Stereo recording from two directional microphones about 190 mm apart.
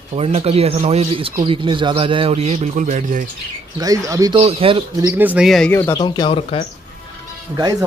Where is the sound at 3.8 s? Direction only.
20° right (ahead or behind).